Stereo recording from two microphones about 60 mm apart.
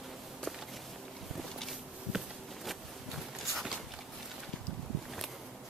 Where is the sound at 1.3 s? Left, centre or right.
Centre.